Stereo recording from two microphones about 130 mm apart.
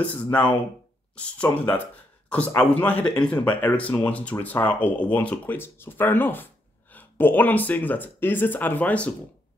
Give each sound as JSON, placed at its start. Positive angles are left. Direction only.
{"t": 0.0, "sound": "speech", "side_deg": 10}